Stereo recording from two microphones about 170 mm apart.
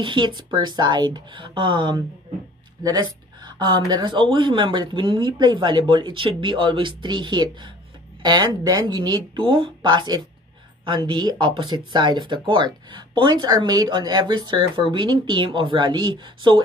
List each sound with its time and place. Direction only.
0.0 s speech: 30° right (ahead or behind)